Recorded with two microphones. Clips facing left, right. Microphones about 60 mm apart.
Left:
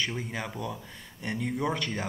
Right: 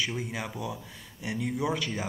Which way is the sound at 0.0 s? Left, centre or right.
Centre.